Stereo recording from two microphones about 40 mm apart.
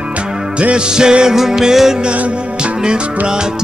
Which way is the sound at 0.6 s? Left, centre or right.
Right.